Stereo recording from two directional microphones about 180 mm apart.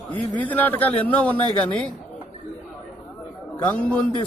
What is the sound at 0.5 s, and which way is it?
A man's voice, 10° left (ahead or behind).